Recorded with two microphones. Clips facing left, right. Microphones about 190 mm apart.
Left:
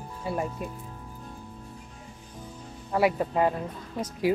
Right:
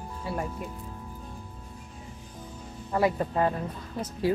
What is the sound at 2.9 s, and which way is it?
Speech, 10° left (ahead or behind).